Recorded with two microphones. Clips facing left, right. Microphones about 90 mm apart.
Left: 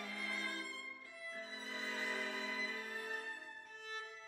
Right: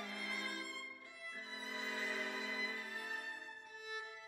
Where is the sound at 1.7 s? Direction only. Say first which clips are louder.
Even; 15° right (ahead or behind).